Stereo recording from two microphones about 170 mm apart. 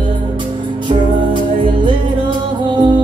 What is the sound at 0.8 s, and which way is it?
Music, 30° right (ahead or behind).